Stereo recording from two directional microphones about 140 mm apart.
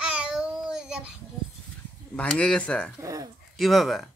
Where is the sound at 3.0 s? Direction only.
25° right (ahead or behind).